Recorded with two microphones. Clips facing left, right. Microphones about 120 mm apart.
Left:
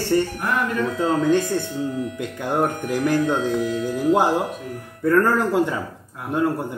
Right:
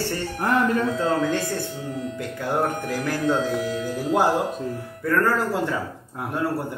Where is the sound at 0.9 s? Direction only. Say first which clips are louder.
Left 3 dB; 20° left (ahead or behind).